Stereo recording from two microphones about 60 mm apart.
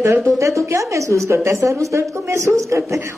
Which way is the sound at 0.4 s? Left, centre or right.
Right.